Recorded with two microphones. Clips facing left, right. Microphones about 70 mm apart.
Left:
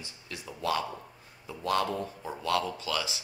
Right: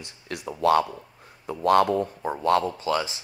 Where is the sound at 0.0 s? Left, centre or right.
Right.